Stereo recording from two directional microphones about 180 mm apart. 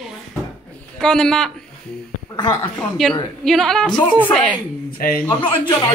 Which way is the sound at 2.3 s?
25° left (ahead or behind).